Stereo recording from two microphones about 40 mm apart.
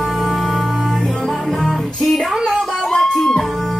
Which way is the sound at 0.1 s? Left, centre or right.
Centre.